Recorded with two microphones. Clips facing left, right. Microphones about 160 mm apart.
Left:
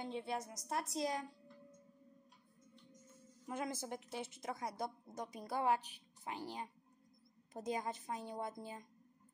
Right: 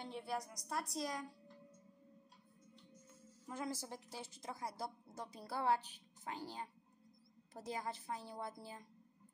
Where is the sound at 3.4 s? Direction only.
20° left (ahead or behind).